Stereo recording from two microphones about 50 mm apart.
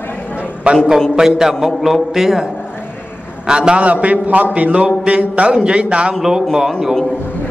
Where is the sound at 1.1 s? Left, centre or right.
Centre.